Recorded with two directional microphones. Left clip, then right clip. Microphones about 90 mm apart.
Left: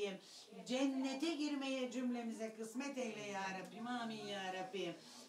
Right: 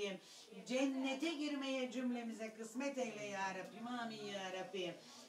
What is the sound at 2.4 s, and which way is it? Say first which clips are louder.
Speech: left 1 dB; 15° left (ahead or behind).